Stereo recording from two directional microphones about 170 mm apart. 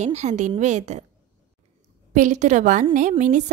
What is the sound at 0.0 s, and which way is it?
A woman's voice, 45° right (ahead or behind).